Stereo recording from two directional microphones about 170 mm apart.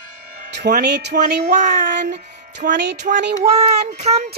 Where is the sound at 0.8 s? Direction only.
80° right.